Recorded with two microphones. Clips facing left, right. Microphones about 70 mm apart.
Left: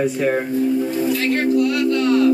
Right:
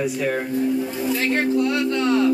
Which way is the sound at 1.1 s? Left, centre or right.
Right.